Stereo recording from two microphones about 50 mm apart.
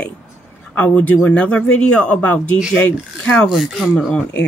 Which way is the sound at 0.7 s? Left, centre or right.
Left.